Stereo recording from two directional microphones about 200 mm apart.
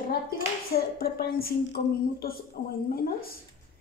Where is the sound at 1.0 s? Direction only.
50° left (ahead or behind).